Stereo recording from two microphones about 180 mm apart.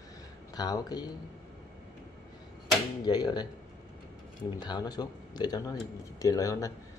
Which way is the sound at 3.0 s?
25° left (ahead or behind).